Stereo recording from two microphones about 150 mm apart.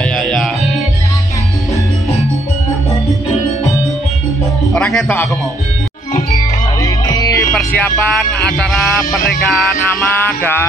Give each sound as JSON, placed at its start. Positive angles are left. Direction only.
{"t": 0.0, "sound": "music", "side_deg": 5}
{"t": 4.7, "sound": "music", "side_deg": 5}
{"t": 6.3, "sound": "music", "side_deg": 25}
{"t": 7.5, "sound": "speech", "side_deg": 5}
{"t": 10.1, "sound": "music", "side_deg": 15}